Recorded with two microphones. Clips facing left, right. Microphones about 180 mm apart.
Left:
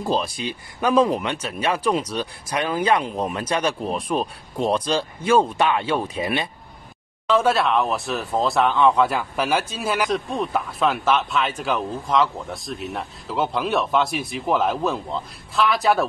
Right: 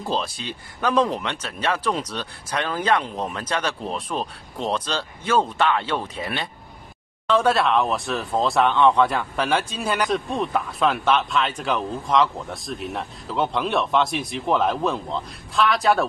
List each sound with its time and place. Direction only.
0.0 s speech: 10° left (ahead or behind)